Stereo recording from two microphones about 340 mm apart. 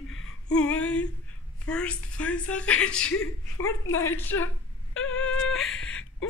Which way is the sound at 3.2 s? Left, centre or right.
Left.